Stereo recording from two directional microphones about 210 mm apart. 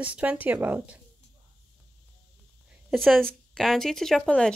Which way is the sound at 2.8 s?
Centre (ahead or behind).